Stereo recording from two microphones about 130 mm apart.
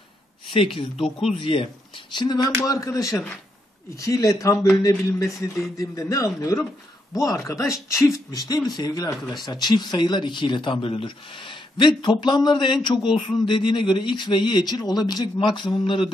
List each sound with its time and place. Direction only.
0.5 s speech: 40° left (ahead or behind)
0.9 s speech: centre (ahead or behind)
1.4 s speech: 45° left (ahead or behind)
2.1 s speech: 30° left (ahead or behind)
9.1 s speech: centre (ahead or behind)
9.4 s speech: 35° left (ahead or behind)